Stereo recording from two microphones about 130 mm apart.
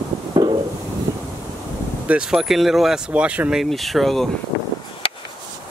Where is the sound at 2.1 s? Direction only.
5° right (ahead or behind).